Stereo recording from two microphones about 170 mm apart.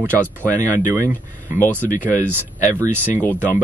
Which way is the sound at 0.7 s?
15° right (ahead or behind).